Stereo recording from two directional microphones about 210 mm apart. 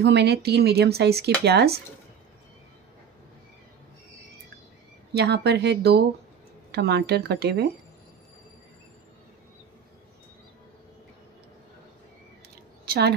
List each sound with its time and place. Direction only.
0.0 s speech: 55° right (ahead or behind)
5.1 s speech: 50° right (ahead or behind)